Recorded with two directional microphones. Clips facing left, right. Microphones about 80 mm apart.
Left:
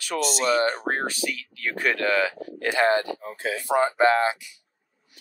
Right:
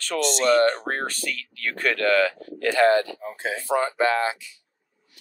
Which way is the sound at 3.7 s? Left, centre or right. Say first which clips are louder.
Left 2 dB; left.